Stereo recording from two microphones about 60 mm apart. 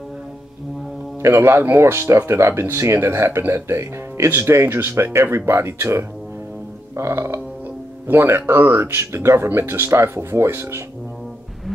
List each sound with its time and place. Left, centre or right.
1.2 s speech: right